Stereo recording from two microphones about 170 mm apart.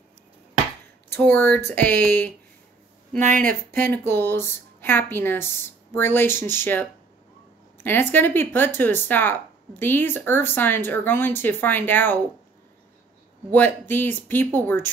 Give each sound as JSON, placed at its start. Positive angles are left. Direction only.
{"t": 1.1, "sound": "speech", "side_deg": 15}
{"t": 3.2, "sound": "speech", "side_deg": -45}
{"t": 3.4, "sound": "speech", "side_deg": 10}
{"t": 13.5, "sound": "speech", "side_deg": 10}